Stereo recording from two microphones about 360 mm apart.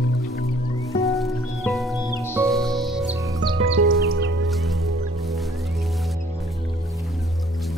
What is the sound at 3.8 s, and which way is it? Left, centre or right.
Music, right.